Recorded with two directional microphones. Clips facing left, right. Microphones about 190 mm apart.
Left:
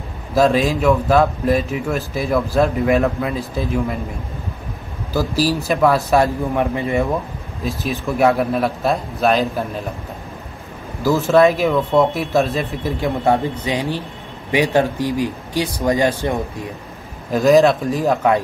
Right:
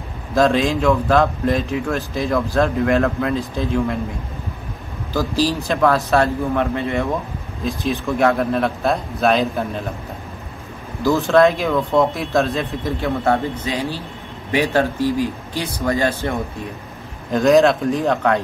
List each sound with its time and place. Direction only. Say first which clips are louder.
0.3 s a man's voice: left 1 dB; 5° left (ahead or behind)
5.1 s speech: left 1 dB; 10° left (ahead or behind)
7.6 s a man's voice: right 1 dB; 5° left (ahead or behind)
11.1 s a man's voice: left 1 dB; 5° left (ahead or behind)
13.0 s speech: left 2 dB; 15° left (ahead or behind)
17.3 s a man's voice: left 1 dB; centre (ahead or behind)